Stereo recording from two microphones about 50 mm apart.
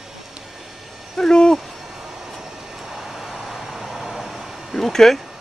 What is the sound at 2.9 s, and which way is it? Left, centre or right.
Vehicle, centre.